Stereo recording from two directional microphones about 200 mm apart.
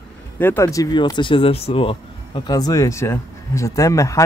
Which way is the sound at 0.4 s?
10° left (ahead or behind).